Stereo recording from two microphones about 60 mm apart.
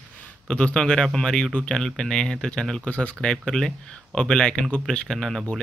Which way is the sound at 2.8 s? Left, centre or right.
Left.